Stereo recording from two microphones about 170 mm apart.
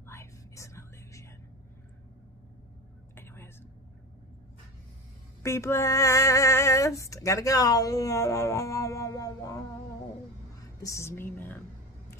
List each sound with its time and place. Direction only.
0.1 s whispering: 15° left (ahead or behind)
3.2 s whispering: 15° left (ahead or behind)
5.4 s female singing: 15° left (ahead or behind)
10.8 s speech: 15° left (ahead or behind)